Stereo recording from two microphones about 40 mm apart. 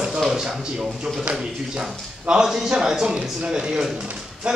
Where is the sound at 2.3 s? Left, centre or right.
Centre.